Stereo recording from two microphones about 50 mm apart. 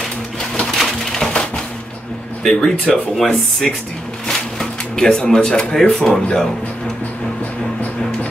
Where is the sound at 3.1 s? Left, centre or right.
Centre.